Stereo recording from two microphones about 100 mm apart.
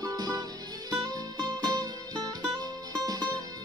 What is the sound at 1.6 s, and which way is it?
Music, 45° right (ahead or behind).